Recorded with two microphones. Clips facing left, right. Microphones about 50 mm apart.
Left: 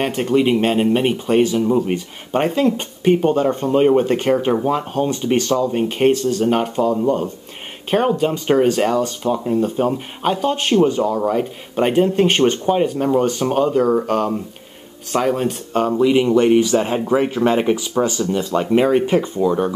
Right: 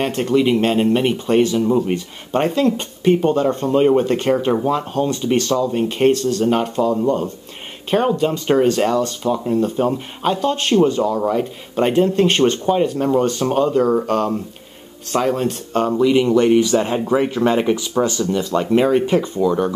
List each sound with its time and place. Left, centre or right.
0.0 s speech: centre
18.0 s speech: centre
18.3 s speech: centre